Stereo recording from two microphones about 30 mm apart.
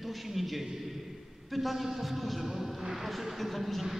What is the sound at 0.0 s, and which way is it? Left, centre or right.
A man's voice, centre.